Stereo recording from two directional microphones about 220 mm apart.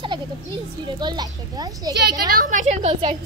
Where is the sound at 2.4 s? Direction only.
30° right (ahead or behind).